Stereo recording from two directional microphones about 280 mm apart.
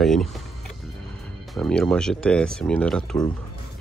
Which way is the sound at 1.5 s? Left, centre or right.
Centre.